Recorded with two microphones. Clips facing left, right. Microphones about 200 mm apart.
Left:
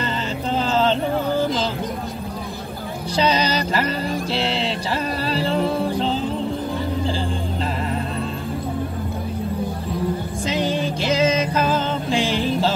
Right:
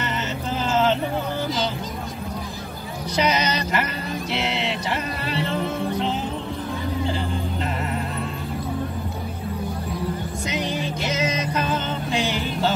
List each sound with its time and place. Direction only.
0.5 s vehicle: 30° left (ahead or behind)
3.2 s music: 30° left (ahead or behind)
10.5 s music: 30° left (ahead or behind)